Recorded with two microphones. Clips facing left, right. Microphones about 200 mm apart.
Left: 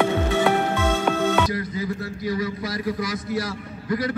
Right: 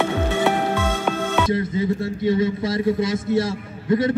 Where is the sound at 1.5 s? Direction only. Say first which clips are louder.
Right 6 dB; 25° right (ahead or behind).